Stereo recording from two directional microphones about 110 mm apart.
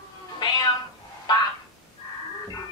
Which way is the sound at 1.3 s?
40° left (ahead or behind).